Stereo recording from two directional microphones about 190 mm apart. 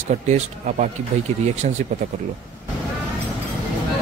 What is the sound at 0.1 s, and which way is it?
Speech, 40° right (ahead or behind).